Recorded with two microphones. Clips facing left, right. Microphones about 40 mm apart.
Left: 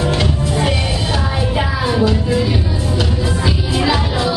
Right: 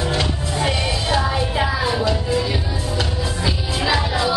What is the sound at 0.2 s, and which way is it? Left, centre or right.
Music, centre.